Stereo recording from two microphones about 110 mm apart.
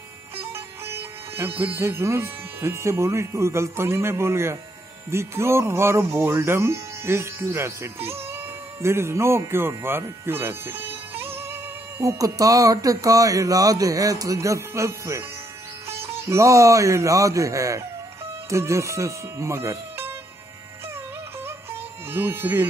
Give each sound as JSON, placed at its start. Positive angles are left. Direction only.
{"t": 0.8, "sound": "speech", "side_deg": -20}
{"t": 12.0, "sound": "speech", "side_deg": -30}
{"t": 22.1, "sound": "speech", "side_deg": -20}